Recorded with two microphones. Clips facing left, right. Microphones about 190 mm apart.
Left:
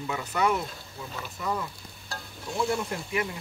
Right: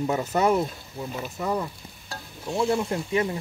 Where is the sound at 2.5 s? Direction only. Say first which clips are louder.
Right 4 dB; 25° right (ahead or behind).